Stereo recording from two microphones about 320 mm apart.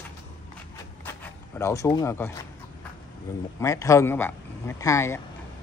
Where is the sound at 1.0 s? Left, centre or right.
Centre.